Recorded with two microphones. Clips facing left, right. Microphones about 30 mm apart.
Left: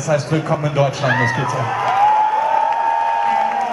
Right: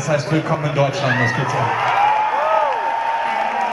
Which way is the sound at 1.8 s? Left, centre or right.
Centre.